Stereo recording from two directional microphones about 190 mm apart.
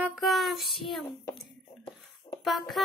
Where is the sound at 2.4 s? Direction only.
Centre (ahead or behind).